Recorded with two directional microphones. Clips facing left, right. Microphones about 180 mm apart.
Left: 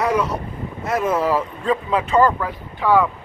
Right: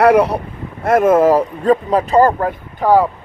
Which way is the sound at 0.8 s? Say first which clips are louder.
Right 9 dB; 55° right (ahead or behind).